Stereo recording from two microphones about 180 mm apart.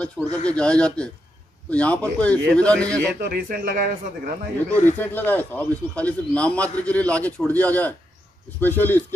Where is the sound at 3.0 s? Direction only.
60° right (ahead or behind).